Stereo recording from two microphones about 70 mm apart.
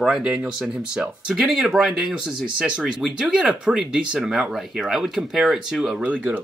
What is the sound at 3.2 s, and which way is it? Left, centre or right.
Speech, centre.